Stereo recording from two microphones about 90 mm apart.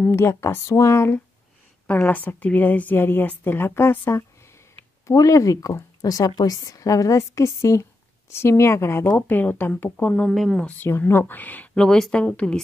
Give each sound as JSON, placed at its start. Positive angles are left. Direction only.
{"t": 0.1, "sound": "a woman's voice", "side_deg": 30}
{"t": 1.9, "sound": "a woman's voice", "side_deg": 15}
{"t": 10.3, "sound": "speech", "side_deg": 0}
{"t": 10.9, "sound": "speech", "side_deg": 25}